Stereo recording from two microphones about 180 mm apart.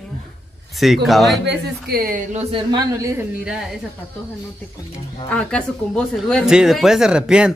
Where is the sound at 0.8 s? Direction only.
Centre (ahead or behind).